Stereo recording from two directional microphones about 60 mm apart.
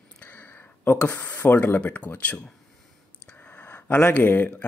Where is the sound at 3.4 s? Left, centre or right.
Left.